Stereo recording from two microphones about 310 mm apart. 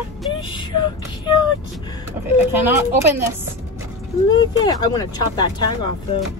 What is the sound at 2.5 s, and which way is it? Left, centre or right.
Speech, centre.